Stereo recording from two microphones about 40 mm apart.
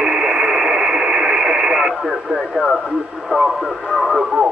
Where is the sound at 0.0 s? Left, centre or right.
Centre.